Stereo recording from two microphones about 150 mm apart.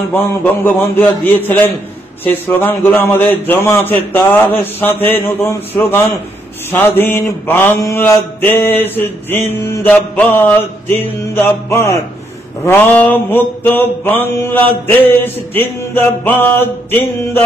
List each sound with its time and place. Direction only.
0.1 s mantra: 15° left (ahead or behind)